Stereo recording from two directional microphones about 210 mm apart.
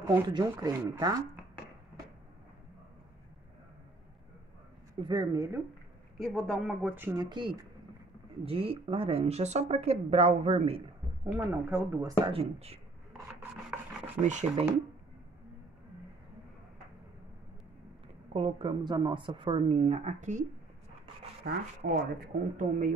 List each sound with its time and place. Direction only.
0.3 s speech: 15° right (ahead or behind)
5.0 s speech: 20° right (ahead or behind)
6.1 s speech: centre (ahead or behind)
7.2 s speech: 20° right (ahead or behind)
11.3 s speech: 10° right (ahead or behind)
12.3 s speech: 30° right (ahead or behind)
13.3 s filing: 10° right (ahead or behind)
14.2 s speech: 35° right (ahead or behind)
18.3 s speech: 30° right (ahead or behind)
21.4 s speech: 45° right (ahead or behind)
22.2 s speech: 40° right (ahead or behind)